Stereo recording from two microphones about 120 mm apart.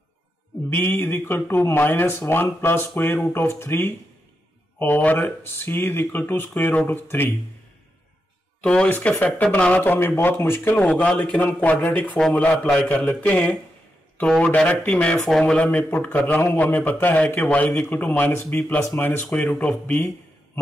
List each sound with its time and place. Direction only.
0.7 s speech: 15° left (ahead or behind)
8.5 s speech: 10° left (ahead or behind)